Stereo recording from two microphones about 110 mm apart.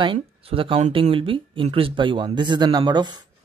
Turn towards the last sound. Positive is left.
turn(degrees=-40)  # may be behind; listen again after turning